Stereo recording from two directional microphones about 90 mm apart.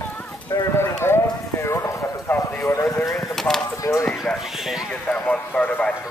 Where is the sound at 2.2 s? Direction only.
20° left (ahead or behind).